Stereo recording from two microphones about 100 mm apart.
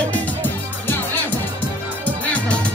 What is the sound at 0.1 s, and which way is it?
Music, 15° left (ahead or behind).